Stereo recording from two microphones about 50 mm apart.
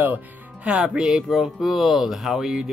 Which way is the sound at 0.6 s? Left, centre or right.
Right.